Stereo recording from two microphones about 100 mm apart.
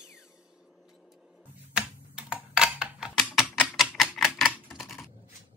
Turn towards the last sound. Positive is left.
turn(degrees=0)  # may be behind; listen again after turning